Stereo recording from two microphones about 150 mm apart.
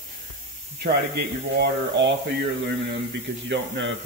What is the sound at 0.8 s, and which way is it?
Speech, 90° right.